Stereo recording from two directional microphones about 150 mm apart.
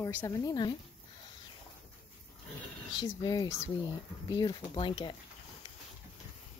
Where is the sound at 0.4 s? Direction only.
25° left (ahead or behind).